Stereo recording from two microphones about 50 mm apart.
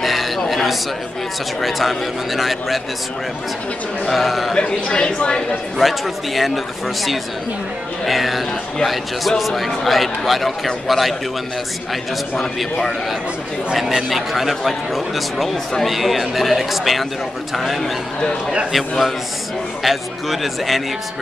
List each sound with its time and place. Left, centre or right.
0.0 s a sound: centre
1.6 s a man's voice: centre
4.1 s a man's voice: centre
4.6 s a woman's voice: centre
5.8 s a man's voice: centre
13.7 s a man's voice: centre